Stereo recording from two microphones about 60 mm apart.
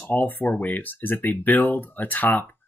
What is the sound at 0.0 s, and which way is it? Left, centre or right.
Speech, left.